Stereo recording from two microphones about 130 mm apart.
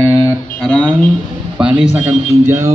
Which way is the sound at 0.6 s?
5° left (ahead or behind).